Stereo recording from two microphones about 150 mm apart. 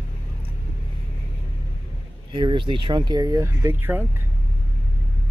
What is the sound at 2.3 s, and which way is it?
Speech, 35° right (ahead or behind).